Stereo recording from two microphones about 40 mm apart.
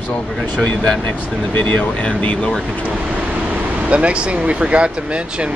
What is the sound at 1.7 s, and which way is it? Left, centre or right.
Speech, left.